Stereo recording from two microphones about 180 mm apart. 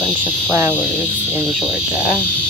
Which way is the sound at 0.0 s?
10° right (ahead or behind).